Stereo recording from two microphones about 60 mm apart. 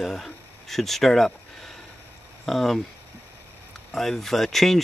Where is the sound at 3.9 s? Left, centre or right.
Centre.